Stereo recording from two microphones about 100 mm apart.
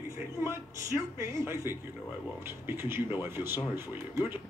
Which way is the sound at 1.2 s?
30° right (ahead or behind).